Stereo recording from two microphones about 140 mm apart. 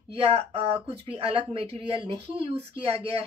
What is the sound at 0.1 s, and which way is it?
A woman's voice, 45° right (ahead or behind).